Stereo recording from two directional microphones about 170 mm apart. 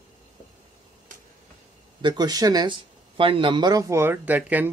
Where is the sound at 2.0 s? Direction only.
25° right (ahead or behind).